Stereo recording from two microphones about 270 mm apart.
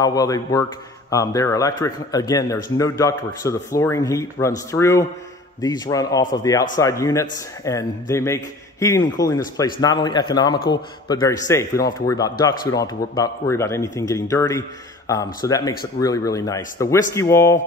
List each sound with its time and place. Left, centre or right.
0.0 s a man's voice: centre